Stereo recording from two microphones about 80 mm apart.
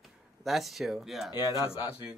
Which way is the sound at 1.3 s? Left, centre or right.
Left.